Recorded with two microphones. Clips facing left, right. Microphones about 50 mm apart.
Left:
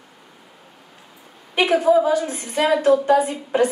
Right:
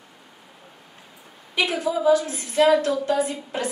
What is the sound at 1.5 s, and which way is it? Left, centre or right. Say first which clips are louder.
A woman's voice: left 8 dB; left.